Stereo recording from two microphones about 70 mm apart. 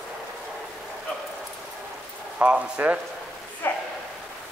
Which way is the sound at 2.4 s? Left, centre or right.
Right.